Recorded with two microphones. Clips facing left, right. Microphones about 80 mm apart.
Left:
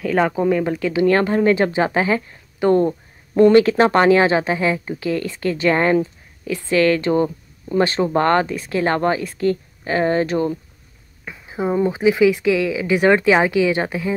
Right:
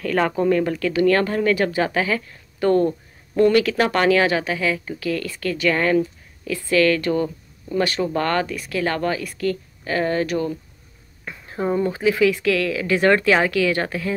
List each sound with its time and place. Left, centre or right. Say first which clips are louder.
0.0 s speech: left 2 dB; centre; by 10.5 s left
11.2 s speech: left 1 dB; centre